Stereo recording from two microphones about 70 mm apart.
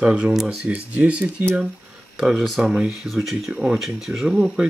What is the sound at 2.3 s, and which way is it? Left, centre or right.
Speech, centre.